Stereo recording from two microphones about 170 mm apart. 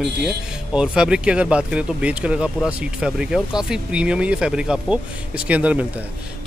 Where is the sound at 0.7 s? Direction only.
5° right (ahead or behind).